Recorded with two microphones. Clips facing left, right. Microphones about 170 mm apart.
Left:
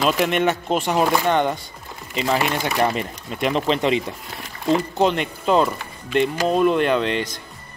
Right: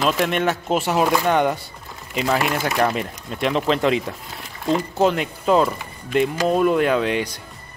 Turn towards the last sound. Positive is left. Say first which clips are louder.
# right 1 dB
turn(degrees=-10)  # may be behind; listen again after turning